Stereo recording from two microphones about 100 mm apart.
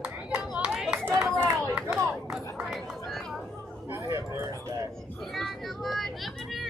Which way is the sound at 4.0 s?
25° right (ahead or behind).